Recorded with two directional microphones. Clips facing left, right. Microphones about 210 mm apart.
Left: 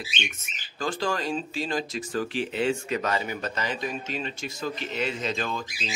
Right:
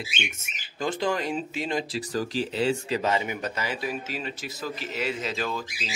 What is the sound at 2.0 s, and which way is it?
Speech, 35° right (ahead or behind).